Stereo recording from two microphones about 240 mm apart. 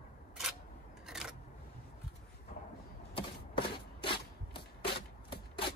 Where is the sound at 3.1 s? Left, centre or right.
Left.